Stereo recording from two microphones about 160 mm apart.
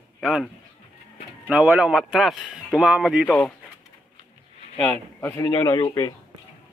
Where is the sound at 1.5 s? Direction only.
5° right (ahead or behind).